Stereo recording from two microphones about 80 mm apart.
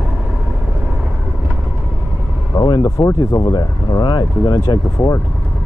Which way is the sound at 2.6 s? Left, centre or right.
Left.